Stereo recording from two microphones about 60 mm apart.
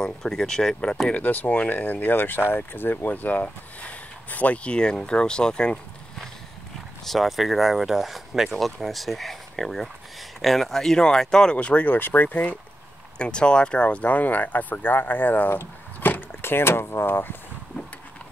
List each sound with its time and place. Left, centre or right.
0.0 s speech: centre
1.1 s speech: left
7.1 s speech: centre
11.5 s speech: left
11.9 s speech: left
13.2 s speech: centre; by 17.4 s left